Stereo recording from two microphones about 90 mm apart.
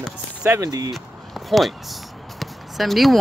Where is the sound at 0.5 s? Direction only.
40° right (ahead or behind).